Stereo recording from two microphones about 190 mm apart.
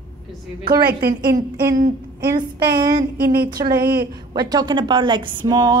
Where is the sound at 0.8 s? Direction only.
50° right (ahead or behind).